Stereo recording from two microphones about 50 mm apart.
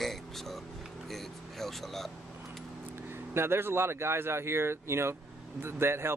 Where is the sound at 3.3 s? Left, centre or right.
Right.